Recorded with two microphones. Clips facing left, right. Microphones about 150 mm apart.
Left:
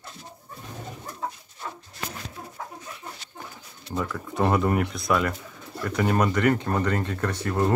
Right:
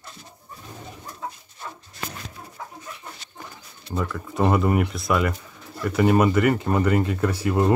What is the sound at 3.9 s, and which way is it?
Speech, centre (ahead or behind).